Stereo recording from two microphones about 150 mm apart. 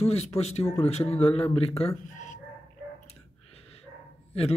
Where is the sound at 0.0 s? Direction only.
45° left (ahead or behind).